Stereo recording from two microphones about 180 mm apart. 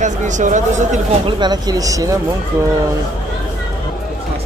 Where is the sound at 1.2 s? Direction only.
25° right (ahead or behind).